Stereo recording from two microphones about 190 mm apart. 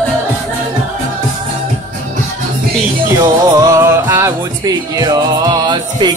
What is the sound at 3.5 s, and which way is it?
Music, 15° right (ahead or behind).